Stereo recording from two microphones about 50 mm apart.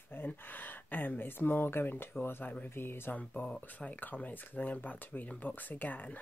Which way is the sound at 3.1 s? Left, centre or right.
Left.